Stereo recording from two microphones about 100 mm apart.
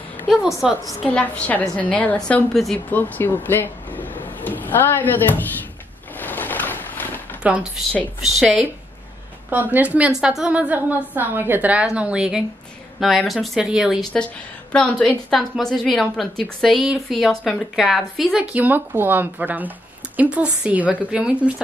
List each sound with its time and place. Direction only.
0.3 s a woman's voice: centre (ahead or behind)
1.0 s a woman's voice: 15° left (ahead or behind)
2.9 s speech: 20° left (ahead or behind)
6.1 s boat: 20° left (ahead or behind)
7.4 s a woman's voice: 15° right (ahead or behind)
14.1 s a woman's voice: 10° left (ahead or behind)
18.5 s a woman's voice: 20° right (ahead or behind)